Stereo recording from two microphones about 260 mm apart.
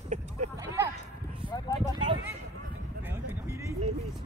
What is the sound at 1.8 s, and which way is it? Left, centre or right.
Speech, centre.